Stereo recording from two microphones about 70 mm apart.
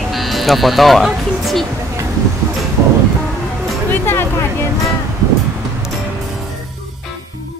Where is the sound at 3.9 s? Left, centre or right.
Left.